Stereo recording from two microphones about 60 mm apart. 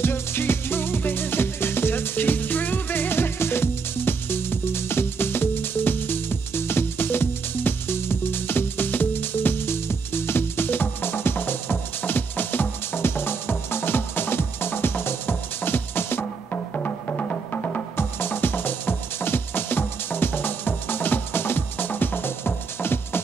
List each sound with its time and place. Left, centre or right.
0.0 s music: left